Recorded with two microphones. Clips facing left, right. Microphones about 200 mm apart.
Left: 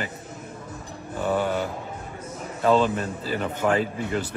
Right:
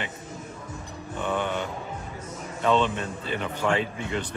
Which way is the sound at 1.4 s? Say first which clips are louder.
Left 3 dB; 5° left (ahead or behind).